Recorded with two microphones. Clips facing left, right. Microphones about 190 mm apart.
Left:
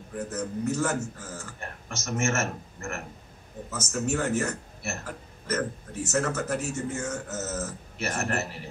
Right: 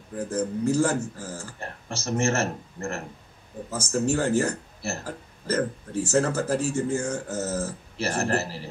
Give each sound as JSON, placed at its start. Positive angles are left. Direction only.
{"t": 0.3, "sound": "speech", "side_deg": -30}